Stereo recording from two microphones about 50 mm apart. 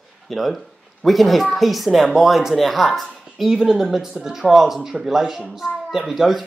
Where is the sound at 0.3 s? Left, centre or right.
Centre.